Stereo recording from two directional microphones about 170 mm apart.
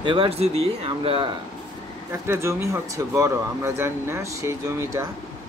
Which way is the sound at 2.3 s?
15° right (ahead or behind).